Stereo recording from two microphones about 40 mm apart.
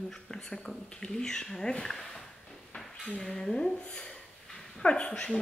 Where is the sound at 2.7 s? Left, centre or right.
Centre.